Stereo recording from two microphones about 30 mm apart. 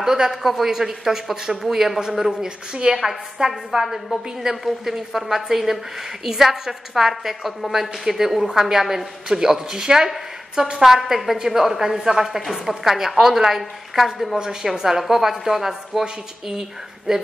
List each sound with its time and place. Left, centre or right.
0.0 s a woman's voice: centre
0.4 s a woman's voice: centre
2.3 s a woman's voice: right
3.8 s a woman's voice: centre
14.4 s a woman's voice: centre
17.1 s a woman's voice: centre